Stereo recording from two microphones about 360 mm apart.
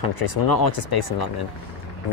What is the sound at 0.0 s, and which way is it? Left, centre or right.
Speech, left.